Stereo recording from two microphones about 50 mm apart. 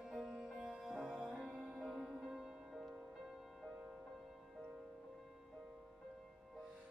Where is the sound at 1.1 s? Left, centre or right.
Right.